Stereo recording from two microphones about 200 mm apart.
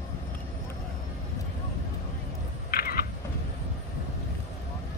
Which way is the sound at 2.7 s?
50° left (ahead or behind).